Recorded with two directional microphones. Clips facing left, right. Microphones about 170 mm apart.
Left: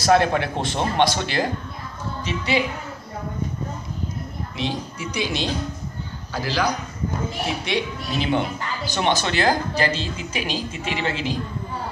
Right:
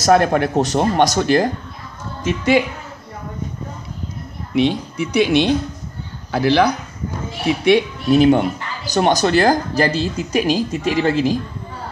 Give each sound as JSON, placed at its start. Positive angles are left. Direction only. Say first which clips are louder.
{"t": 0.0, "sound": "speech", "louder": "right 4 dB", "side_deg": -45}
{"t": 4.6, "sound": "speech", "louder": "right 11 dB", "side_deg": -60}